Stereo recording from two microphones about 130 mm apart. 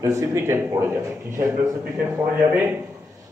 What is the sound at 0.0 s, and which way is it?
A man's voice, 25° right (ahead or behind).